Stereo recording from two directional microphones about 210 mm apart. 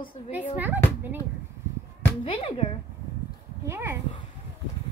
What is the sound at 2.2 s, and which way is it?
Speech, 25° left (ahead or behind).